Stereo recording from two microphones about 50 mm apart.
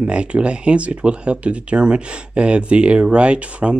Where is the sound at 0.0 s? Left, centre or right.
Right.